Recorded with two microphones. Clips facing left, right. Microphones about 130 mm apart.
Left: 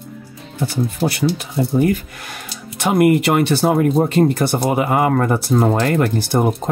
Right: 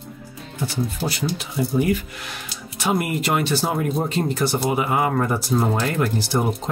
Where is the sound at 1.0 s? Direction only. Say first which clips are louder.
Left 7 dB; 60° left (ahead or behind).